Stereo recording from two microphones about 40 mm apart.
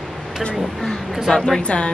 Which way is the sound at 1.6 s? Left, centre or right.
Left.